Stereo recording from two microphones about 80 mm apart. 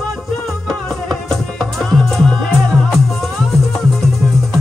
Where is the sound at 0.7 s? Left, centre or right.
Centre.